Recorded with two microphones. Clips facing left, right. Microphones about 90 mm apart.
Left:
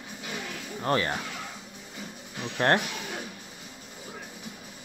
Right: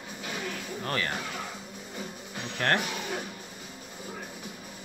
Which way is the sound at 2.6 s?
25° left (ahead or behind).